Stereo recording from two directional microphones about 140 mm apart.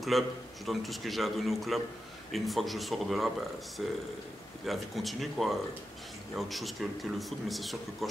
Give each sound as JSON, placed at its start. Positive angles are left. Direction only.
{"t": 0.1, "sound": "speech", "side_deg": 0}